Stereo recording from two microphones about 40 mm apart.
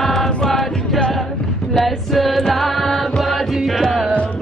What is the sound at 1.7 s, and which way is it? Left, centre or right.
Music, centre.